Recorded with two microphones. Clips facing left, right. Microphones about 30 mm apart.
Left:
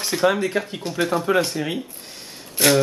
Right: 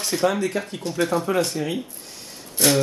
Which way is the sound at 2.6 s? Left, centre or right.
Left.